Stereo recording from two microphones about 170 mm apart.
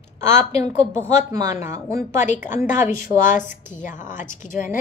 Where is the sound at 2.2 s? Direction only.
45° left (ahead or behind).